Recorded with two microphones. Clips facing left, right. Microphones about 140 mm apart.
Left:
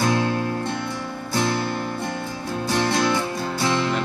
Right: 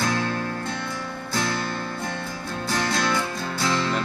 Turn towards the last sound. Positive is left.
turn(degrees=15)  # may be behind; listen again after turning